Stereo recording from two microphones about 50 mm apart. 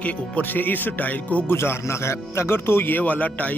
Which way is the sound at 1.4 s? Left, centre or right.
Left.